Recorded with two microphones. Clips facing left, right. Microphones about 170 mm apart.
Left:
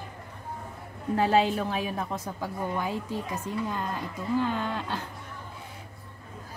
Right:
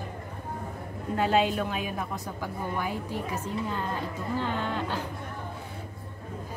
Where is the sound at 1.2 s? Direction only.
35° left (ahead or behind).